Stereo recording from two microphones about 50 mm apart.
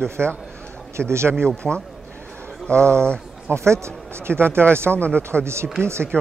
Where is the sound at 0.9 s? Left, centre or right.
Right.